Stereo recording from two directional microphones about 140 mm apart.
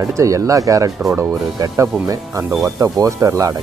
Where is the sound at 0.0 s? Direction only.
25° right (ahead or behind).